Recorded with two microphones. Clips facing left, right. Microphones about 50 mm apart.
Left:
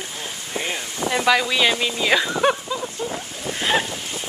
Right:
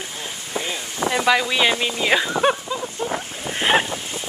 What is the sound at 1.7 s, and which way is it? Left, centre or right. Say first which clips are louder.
Speech: even; right.